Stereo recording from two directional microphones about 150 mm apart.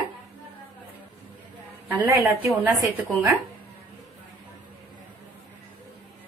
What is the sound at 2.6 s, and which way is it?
Speech, 15° right (ahead or behind).